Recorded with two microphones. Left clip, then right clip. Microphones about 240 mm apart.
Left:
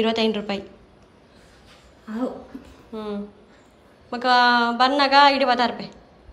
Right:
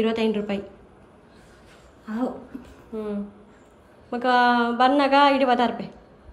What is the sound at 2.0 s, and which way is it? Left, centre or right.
A woman's voice, centre.